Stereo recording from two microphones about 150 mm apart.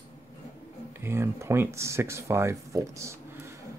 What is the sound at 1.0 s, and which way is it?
Speech, 15° right (ahead or behind).